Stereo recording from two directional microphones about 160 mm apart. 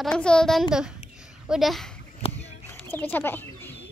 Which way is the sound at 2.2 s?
40° left (ahead or behind).